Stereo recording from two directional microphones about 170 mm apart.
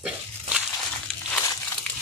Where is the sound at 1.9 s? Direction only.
10° left (ahead or behind).